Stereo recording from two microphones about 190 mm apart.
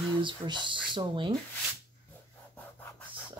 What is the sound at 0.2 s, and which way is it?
Speech, 25° right (ahead or behind).